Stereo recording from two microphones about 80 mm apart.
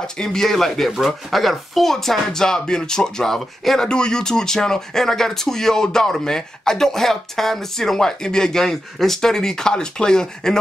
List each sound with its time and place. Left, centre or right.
0.0 s speech: centre